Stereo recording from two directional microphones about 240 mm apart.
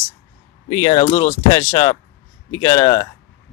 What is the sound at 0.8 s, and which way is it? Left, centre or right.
Speech, left.